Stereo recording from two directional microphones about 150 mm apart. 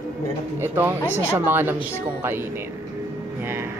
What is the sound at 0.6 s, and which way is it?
Speech, 15° right (ahead or behind).